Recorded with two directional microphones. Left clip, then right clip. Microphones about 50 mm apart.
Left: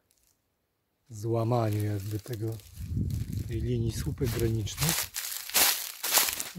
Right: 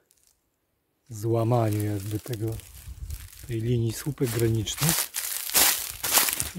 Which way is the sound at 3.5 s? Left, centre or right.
Right.